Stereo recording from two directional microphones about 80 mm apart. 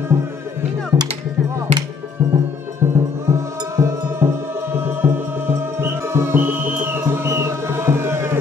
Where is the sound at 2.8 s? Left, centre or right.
Right.